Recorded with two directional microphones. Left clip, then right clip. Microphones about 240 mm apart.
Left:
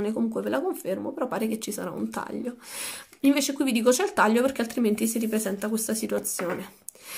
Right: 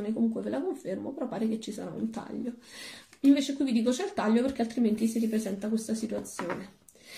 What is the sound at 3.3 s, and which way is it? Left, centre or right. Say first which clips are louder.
A woman's voice: left 1 dB; left.